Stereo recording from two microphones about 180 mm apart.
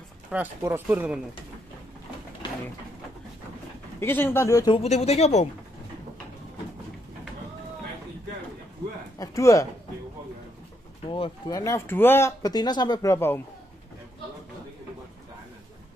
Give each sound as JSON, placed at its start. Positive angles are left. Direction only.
{"t": 0.3, "sound": "speech", "side_deg": -10}
{"t": 4.0, "sound": "speech", "side_deg": 10}
{"t": 4.7, "sound": "speech", "side_deg": 35}
{"t": 9.2, "sound": "speech", "side_deg": 20}
{"t": 11.1, "sound": "speech", "side_deg": 30}